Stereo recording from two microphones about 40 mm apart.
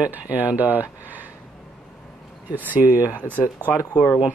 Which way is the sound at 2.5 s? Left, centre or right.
Right.